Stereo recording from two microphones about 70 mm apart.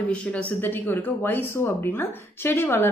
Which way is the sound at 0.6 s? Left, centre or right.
Left.